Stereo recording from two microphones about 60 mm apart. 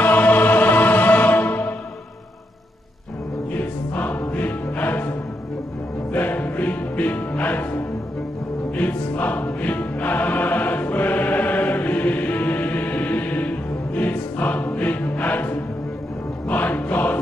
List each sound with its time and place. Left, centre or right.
0.0 s music: left
3.5 s music: left
6.1 s music: left